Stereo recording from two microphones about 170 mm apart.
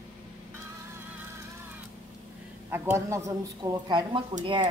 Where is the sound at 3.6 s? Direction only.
25° right (ahead or behind).